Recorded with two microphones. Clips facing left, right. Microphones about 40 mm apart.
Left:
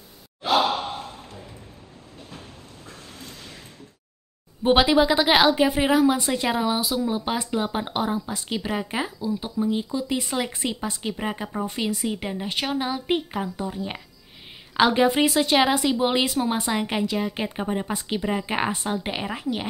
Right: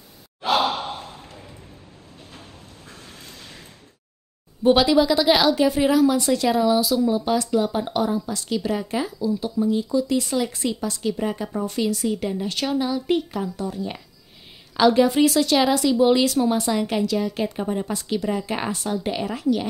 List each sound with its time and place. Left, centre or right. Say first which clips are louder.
4.6 s speech: right 1 dB; left